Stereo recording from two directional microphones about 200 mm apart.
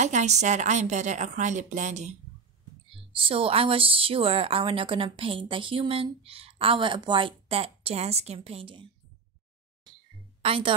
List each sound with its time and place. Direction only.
0.0 s a woman's voice: 35° right (ahead or behind)
10.4 s a woman's voice: 25° right (ahead or behind)